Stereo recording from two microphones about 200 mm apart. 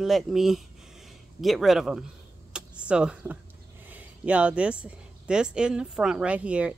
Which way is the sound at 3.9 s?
5° right (ahead or behind).